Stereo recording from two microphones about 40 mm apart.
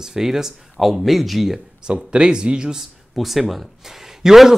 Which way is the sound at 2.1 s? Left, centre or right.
Right.